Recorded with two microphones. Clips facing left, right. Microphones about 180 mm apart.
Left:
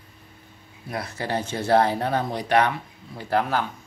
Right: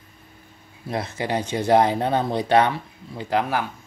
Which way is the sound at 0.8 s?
25° right (ahead or behind).